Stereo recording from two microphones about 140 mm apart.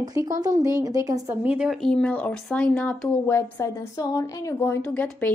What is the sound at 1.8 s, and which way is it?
Speech, 5° left (ahead or behind).